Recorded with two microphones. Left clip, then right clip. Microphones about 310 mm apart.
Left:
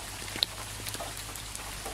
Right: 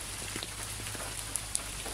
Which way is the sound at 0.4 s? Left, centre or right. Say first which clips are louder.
Left 11 dB; left.